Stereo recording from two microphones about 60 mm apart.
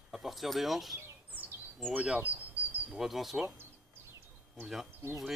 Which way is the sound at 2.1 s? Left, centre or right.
Right.